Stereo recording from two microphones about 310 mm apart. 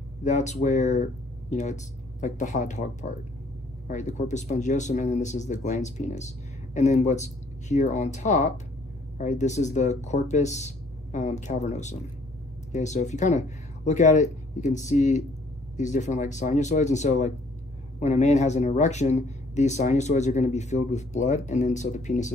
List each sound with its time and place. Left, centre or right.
0.2 s speech: left